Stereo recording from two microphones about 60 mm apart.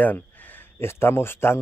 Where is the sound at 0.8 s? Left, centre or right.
Left.